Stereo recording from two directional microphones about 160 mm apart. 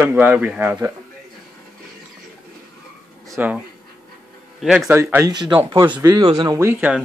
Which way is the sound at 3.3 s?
10° right (ahead or behind).